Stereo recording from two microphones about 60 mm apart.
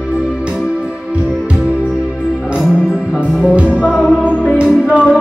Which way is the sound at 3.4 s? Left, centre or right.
Centre.